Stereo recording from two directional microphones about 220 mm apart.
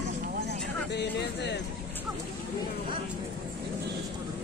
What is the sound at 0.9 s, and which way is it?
Music, 50° left (ahead or behind).